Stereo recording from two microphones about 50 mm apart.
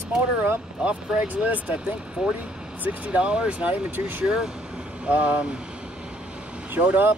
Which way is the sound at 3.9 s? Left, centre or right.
Right.